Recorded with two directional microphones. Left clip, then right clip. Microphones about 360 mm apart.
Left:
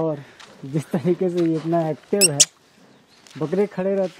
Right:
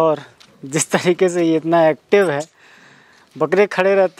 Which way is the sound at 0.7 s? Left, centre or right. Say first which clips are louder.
Right 7 dB; centre.